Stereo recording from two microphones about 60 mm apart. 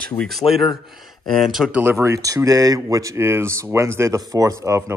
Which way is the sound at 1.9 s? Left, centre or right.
Right.